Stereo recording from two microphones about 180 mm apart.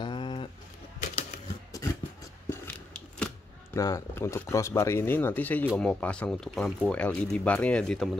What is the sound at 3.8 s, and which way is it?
Speech, 15° left (ahead or behind).